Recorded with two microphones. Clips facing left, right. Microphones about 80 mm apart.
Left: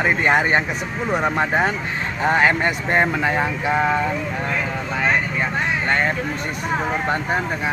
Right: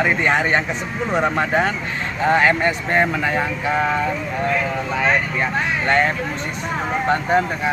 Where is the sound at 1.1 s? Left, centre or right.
Centre.